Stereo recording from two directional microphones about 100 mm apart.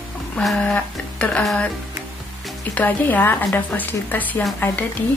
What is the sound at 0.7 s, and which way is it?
Speech, 15° left (ahead or behind).